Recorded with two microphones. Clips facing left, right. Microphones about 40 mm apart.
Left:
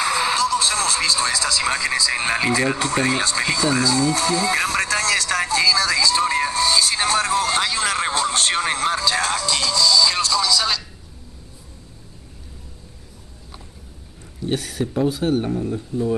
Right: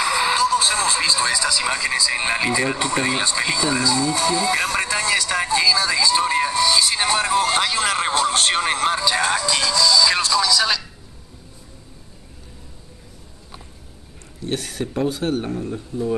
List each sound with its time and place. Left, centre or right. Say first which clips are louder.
0.1 s radio: right 1 dB; centre
1.9 s speech: even; centre
3.7 s speech: left 1 dB; right
4.8 s speech: left 1 dB; right; by 10.8 s centre
14.8 s speech: left 2 dB; centre